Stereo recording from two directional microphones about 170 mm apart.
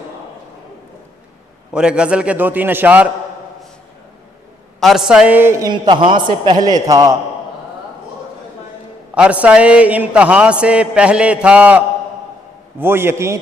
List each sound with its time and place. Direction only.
1.7 s a man's voice: 5° right (ahead or behind)
4.7 s a woman's voice: centre (ahead or behind)
5.7 s a man's voice: 25° right (ahead or behind)
9.1 s a man's voice: 5° right (ahead or behind)